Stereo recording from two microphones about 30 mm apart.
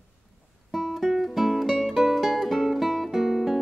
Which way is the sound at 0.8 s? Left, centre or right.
Centre.